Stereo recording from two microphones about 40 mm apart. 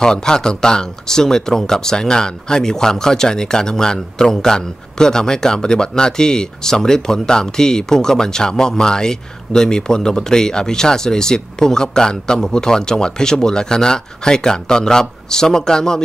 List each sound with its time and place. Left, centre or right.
0.0 s speech: centre